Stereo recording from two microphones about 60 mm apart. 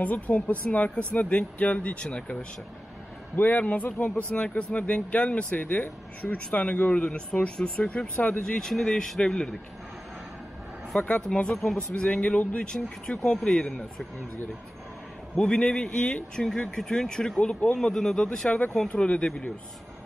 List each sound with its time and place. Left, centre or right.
0.0 s speech: left
3.3 s speech: left
8.4 s speech: centre
11.0 s speech: left
15.3 s speech: centre
18.5 s speech: left